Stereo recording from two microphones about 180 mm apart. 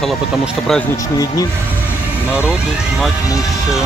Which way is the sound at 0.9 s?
20° left (ahead or behind).